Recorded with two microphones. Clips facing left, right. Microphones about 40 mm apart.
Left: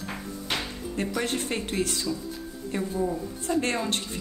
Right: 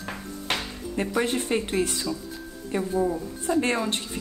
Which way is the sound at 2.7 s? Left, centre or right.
Centre.